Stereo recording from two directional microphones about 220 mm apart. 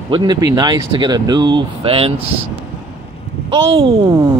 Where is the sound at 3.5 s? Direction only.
25° right (ahead or behind).